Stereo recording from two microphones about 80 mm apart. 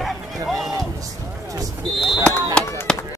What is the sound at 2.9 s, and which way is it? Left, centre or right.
Run, centre.